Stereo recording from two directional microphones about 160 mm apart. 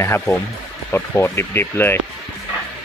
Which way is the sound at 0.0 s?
15° left (ahead or behind).